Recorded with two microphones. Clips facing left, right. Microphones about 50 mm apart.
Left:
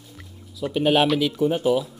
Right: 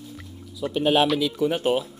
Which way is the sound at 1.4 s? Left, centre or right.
Right.